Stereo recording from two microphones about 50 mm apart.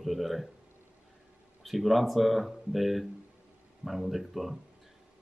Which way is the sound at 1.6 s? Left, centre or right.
Centre.